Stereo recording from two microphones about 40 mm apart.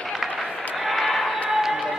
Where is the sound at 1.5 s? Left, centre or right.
Centre.